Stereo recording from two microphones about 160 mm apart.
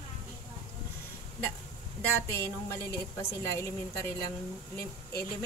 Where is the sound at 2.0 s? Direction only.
15° left (ahead or behind).